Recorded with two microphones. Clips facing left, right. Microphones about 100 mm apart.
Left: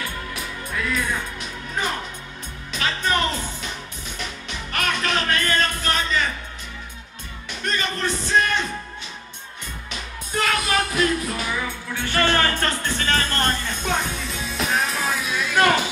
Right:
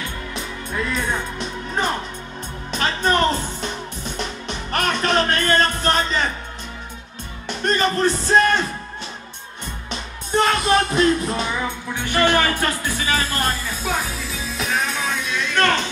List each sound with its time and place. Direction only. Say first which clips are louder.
0.0 s music: right 1 dB; 25° right (ahead or behind)
7.4 s music: right 6 dB; 35° right (ahead or behind)
9.8 s music: right 5 dB; 30° right (ahead or behind); by 15.9 s 10° left (ahead or behind)